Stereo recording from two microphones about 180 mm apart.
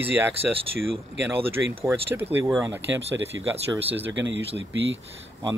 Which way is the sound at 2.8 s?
80° right.